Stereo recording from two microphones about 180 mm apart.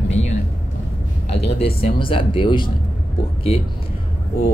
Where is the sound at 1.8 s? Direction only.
30° left (ahead or behind).